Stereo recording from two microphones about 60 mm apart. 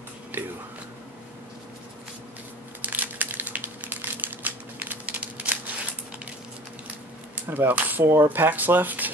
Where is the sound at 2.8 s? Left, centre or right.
Right.